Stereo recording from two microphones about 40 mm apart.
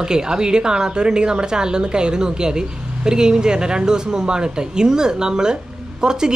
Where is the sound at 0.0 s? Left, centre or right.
Centre.